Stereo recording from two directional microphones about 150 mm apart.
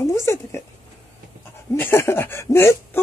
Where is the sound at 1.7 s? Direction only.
15° left (ahead or behind).